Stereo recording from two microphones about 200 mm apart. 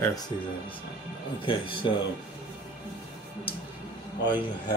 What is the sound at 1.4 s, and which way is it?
Speech, 25° left (ahead or behind).